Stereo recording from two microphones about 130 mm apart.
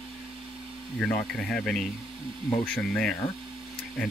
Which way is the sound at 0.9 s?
5° left (ahead or behind).